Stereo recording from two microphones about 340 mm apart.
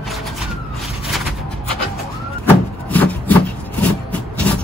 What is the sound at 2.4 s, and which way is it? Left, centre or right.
Rub, centre.